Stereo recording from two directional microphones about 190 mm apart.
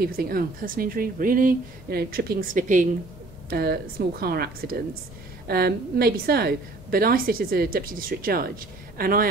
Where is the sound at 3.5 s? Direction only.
55° right (ahead or behind).